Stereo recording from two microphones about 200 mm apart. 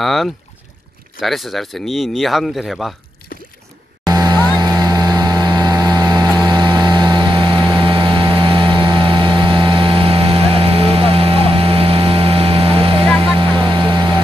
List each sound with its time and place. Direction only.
0.0 s speech: centre (ahead or behind)
4.0 s vehicle: 20° right (ahead or behind)